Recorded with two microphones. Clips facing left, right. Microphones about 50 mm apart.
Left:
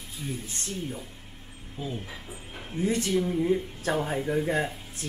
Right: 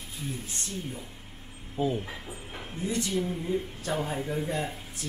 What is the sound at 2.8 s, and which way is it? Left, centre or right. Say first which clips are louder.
Speech: left 4 dB; left.